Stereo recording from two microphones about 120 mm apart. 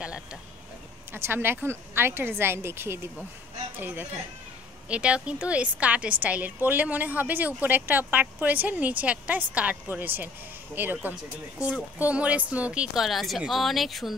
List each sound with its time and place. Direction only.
0.0 s a woman's voice: 10° right (ahead or behind)